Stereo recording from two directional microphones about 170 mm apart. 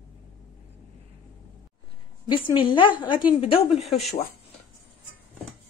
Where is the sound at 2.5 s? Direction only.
30° left (ahead or behind).